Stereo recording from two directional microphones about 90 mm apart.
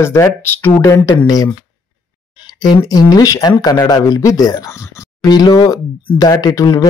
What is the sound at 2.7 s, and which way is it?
Speech, 45° left (ahead or behind).